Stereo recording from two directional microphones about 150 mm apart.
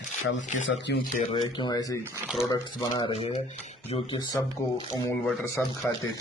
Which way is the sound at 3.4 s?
50° left (ahead or behind).